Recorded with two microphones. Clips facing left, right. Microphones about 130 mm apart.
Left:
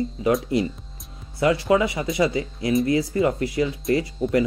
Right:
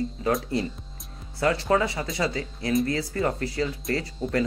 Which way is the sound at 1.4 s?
15° left (ahead or behind).